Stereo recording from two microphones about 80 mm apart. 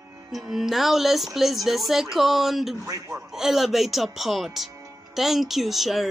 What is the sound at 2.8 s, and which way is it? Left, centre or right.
Speech, right.